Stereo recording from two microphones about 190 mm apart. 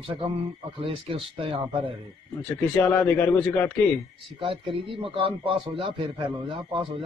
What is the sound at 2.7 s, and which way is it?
A man's voice, 5° left (ahead or behind).